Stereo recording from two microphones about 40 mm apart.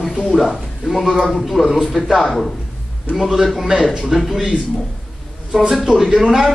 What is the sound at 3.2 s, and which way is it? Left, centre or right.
Speech, centre.